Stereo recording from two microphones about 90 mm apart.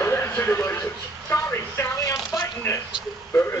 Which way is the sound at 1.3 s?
35° left (ahead or behind).